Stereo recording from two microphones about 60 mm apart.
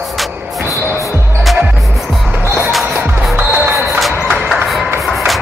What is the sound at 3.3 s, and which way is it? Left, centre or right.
Music, right.